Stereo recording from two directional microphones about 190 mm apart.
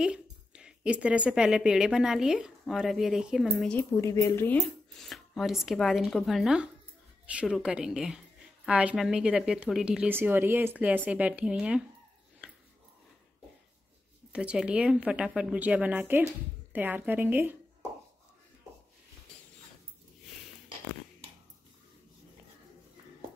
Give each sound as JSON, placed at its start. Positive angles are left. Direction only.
{"t": 0.0, "sound": "speech", "side_deg": -5}
{"t": 3.9, "sound": "speech", "side_deg": 15}
{"t": 4.9, "sound": "speech", "side_deg": 0}
{"t": 12.4, "sound": "a sound", "side_deg": -5}
{"t": 14.3, "sound": "speech", "side_deg": -5}